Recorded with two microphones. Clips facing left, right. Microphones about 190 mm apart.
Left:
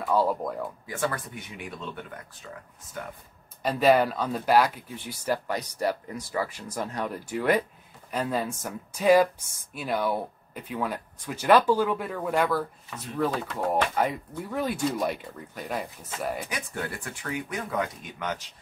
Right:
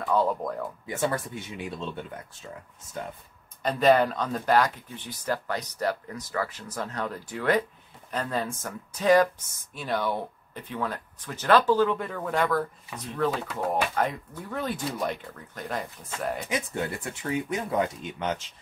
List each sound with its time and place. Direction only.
0.0 s speech: 5° left (ahead or behind)
0.8 s speech: 25° right (ahead or behind)
3.6 s speech: 5° left (ahead or behind)
16.4 s speech: 20° right (ahead or behind)